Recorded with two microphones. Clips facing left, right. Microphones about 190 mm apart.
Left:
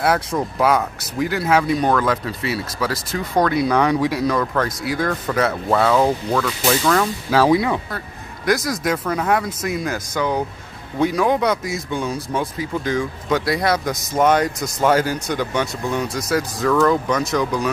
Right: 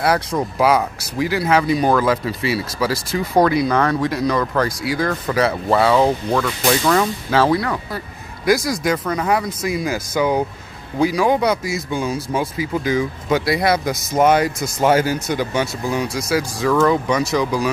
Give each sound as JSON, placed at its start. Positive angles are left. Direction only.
{"t": 0.0, "sound": "speech", "side_deg": 0}
{"t": 3.6, "sound": "speech", "side_deg": 15}
{"t": 7.2, "sound": "speech", "side_deg": 5}
{"t": 7.5, "sound": "speech", "side_deg": 15}
{"t": 8.5, "sound": "speech", "side_deg": 0}